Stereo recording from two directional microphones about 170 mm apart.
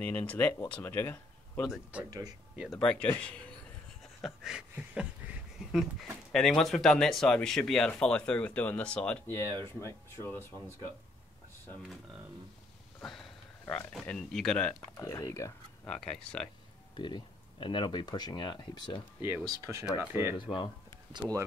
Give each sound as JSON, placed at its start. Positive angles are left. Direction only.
{"t": 0.0, "sound": "speech", "side_deg": 10}
{"t": 1.7, "sound": "speech", "side_deg": -10}
{"t": 2.0, "sound": "speech", "side_deg": -20}
{"t": 2.5, "sound": "speech", "side_deg": 0}
{"t": 4.0, "sound": "a sound", "side_deg": 0}
{"t": 6.3, "sound": "speech", "side_deg": 0}
{"t": 13.7, "sound": "speech", "side_deg": 5}
{"t": 15.0, "sound": "speech", "side_deg": 20}
{"t": 15.9, "sound": "speech", "side_deg": 5}
{"t": 16.9, "sound": "speech", "side_deg": 30}
{"t": 19.4, "sound": "speech", "side_deg": -20}
{"t": 20.3, "sound": "speech", "side_deg": 25}
{"t": 21.1, "sound": "speech", "side_deg": -20}